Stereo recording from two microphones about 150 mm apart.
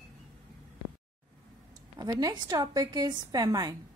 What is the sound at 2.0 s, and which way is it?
A woman's voice, 25° right (ahead or behind).